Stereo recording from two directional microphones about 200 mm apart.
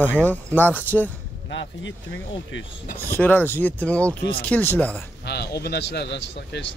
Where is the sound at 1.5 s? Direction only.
65° left (ahead or behind).